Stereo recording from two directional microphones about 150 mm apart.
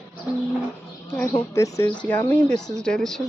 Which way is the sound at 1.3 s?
20° left (ahead or behind).